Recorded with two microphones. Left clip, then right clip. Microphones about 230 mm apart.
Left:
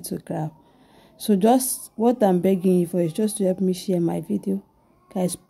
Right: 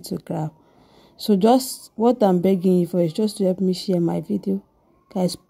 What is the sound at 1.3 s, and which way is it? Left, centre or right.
Speech, right.